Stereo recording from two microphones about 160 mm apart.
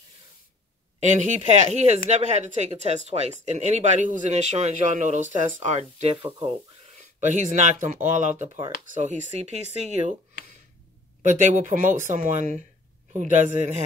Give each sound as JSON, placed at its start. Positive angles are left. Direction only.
{"t": 0.9, "sound": "speech", "side_deg": -45}
{"t": 7.2, "sound": "speech", "side_deg": -50}
{"t": 11.2, "sound": "speech", "side_deg": -50}